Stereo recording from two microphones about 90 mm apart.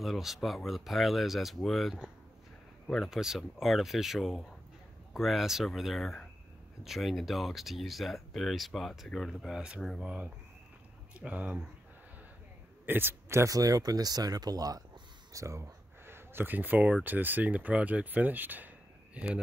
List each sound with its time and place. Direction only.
0.0 s speech: centre (ahead or behind)
9.9 s speech: 15° right (ahead or behind)
12.8 s speech: 25° right (ahead or behind); by 14.8 s 45° right (ahead or behind)
15.3 s speech: 35° right (ahead or behind); by 19.4 s 15° right (ahead or behind)